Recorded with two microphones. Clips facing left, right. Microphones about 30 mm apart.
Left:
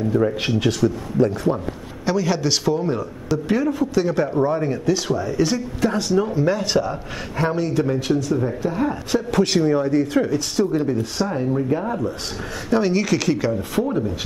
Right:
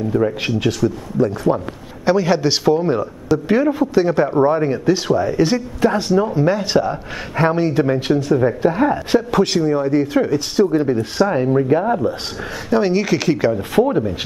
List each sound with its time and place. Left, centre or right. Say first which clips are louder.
0.1 s speech: right 2 dB; centre
2.0 s a man's voice: right 5 dB; centre
9.3 s speech: right 3 dB; centre
9.6 s speech: right 1 dB; centre
9.8 s a man's voice: right 3 dB; centre